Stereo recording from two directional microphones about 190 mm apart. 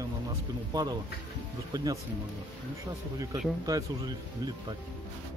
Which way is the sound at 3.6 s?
20° right (ahead or behind).